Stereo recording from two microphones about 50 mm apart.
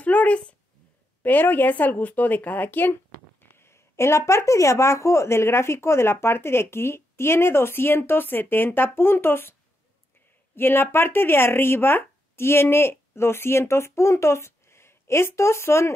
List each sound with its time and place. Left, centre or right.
0.0 s a sound: left
1.2 s speech: left
2.9 s speech: left